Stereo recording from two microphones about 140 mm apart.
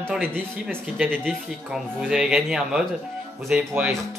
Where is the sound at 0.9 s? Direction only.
10° right (ahead or behind).